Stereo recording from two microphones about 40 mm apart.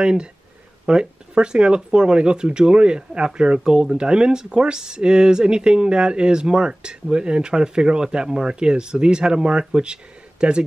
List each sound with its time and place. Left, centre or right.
0.0 s speech: right